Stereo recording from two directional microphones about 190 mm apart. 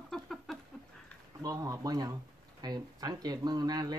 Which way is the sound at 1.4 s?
20° right (ahead or behind).